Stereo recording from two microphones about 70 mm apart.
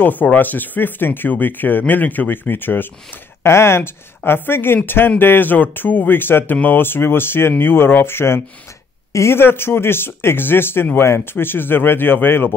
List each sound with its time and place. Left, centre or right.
0.0 s speech: left